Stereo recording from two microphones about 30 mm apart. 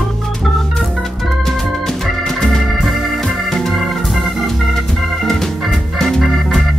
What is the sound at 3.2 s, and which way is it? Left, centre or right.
Organ, centre.